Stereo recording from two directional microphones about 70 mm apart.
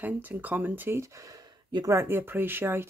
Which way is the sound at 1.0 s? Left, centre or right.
Right.